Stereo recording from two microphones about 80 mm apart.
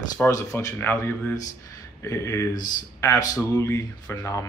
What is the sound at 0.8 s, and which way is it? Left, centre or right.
Speech, left.